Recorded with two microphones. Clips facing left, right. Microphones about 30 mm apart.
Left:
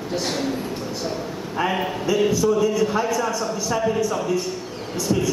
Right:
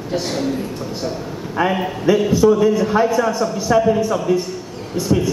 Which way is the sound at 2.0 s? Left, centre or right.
Right.